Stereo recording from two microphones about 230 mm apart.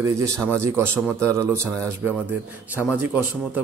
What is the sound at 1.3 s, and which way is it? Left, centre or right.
A man's voice, centre.